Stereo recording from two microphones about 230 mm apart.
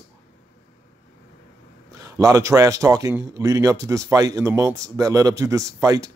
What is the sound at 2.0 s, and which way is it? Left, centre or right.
Speech, centre.